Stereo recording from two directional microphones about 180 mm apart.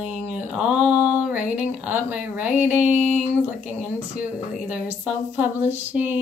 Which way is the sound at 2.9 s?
40° right (ahead or behind).